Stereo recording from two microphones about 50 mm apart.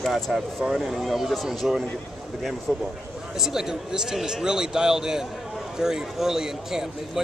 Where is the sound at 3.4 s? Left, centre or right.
Centre.